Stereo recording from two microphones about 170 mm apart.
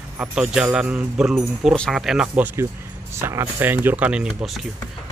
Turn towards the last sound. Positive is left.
turn(degrees=0)  # may be behind; listen again after turning